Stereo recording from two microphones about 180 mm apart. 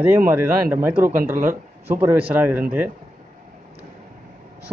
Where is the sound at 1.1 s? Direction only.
50° right (ahead or behind).